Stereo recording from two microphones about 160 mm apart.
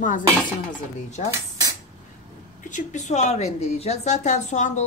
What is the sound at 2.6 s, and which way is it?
A woman's voice, 50° left (ahead or behind).